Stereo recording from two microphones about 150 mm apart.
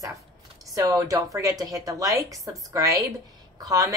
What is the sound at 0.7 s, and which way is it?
A woman's voice, 20° right (ahead or behind).